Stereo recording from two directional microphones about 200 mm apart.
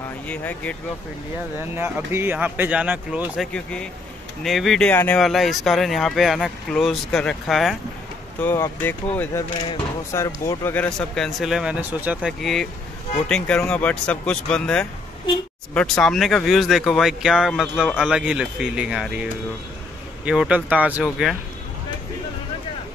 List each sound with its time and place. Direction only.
0.3 s speech: 10° left (ahead or behind)
1.6 s speech: 10° right (ahead or behind)